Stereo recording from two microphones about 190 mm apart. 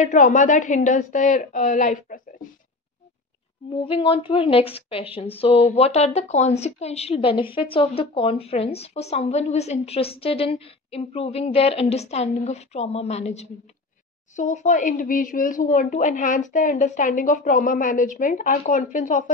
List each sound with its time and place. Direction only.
0.0 s a woman's voice: 40° left (ahead or behind)
3.8 s a woman's voice: 30° left (ahead or behind)